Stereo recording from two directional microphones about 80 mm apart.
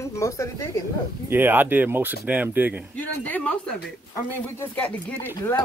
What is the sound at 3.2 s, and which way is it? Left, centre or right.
Speech, centre.